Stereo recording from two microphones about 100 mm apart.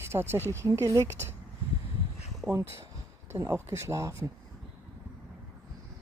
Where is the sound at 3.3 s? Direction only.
25° right (ahead or behind).